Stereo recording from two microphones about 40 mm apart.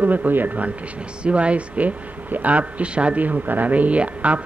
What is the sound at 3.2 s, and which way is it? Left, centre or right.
A man's voice, right.